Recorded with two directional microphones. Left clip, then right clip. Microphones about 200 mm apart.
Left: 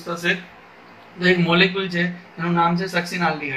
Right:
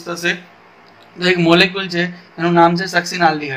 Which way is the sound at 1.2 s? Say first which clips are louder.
Right 5 dB; 55° right (ahead or behind).